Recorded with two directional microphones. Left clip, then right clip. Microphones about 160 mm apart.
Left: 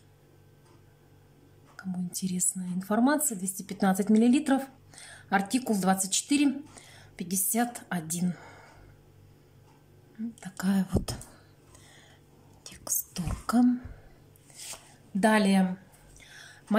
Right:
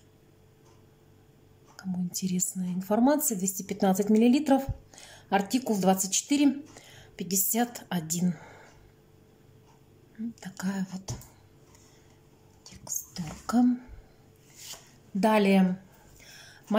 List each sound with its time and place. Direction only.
1.8 s speech: centre (ahead or behind)
10.4 s speech: 15° left (ahead or behind)
12.6 s whispering: 20° left (ahead or behind)
13.2 s speech: centre (ahead or behind)
15.1 s speech: 5° right (ahead or behind)
16.2 s a sound: 5° right (ahead or behind)